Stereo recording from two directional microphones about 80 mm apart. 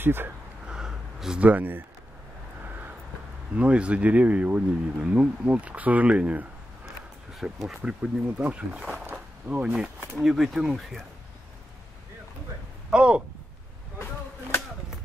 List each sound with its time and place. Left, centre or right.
0.0 s speech: right
0.7 s a sound: centre; by 1.9 s right
3.5 s speech: centre
7.4 s speech: centre
9.1 s a sound: centre
10.1 s speech: centre
12.9 s speech: centre